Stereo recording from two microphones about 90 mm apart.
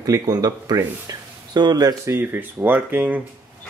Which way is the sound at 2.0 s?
25° right (ahead or behind).